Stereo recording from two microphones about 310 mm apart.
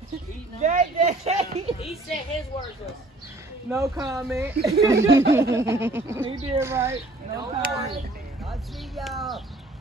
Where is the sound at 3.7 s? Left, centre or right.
Centre.